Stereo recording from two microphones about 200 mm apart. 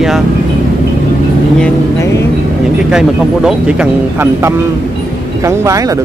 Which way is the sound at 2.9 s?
5° right (ahead or behind).